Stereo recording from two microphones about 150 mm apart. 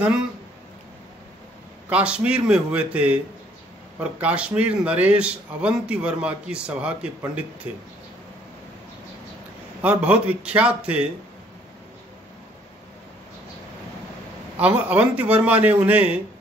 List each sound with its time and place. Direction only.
1.9 s a man's voice: 10° right (ahead or behind)
9.8 s a man's voice: 10° right (ahead or behind)
14.6 s a man's voice: 10° right (ahead or behind)